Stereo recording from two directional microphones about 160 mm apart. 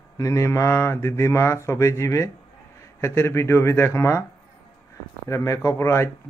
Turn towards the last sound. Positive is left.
turn(degrees=15)  # may be behind; listen again after turning